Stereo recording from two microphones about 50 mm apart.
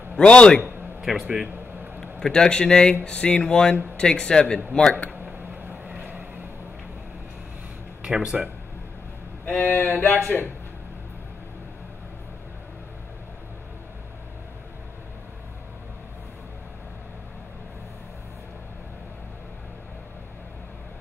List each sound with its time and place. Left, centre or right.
0.2 s speech: left
0.6 s a sound: right
1.2 s speech: centre
2.0 s a man's voice: centre
5.1 s a sound: right
8.0 s speech: centre
9.4 s speech: left